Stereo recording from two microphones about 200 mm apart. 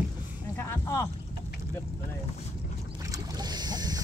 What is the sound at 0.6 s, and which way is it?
Boat, 15° left (ahead or behind).